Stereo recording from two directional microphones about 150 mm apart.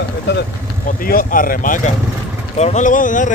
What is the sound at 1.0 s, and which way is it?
Speech, 70° left (ahead or behind).